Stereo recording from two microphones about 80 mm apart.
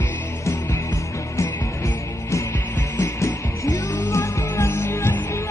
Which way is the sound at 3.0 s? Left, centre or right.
Left.